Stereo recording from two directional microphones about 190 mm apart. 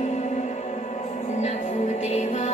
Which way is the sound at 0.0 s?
35° left (ahead or behind).